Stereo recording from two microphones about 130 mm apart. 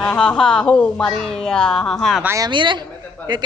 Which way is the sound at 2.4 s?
35° right (ahead or behind).